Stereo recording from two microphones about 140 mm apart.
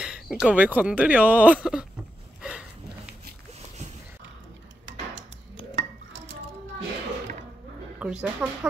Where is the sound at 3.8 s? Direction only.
55° right (ahead or behind).